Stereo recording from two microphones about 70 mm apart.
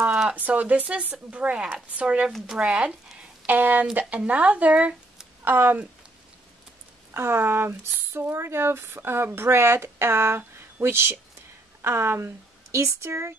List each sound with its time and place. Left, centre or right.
0.4 s speech: right
2.3 s speech: centre
2.6 s speech: centre
5.4 s speech: right
7.2 s speech: right